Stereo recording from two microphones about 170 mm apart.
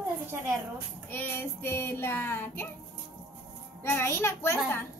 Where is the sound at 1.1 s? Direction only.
10° left (ahead or behind).